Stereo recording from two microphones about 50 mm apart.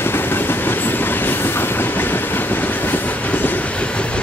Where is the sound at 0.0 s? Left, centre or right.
Left.